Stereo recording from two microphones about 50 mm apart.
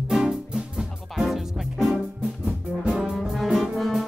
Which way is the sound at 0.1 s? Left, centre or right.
Centre.